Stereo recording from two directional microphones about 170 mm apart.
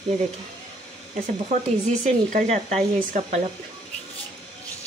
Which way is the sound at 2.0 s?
45° right (ahead or behind).